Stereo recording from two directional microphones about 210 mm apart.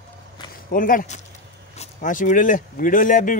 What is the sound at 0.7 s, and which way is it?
Speech, 40° left (ahead or behind).